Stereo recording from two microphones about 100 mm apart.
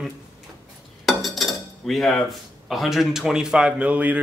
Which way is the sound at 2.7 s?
Centre (ahead or behind).